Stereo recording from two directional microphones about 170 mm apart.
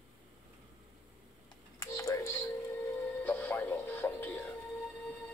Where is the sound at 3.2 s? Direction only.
10° left (ahead or behind).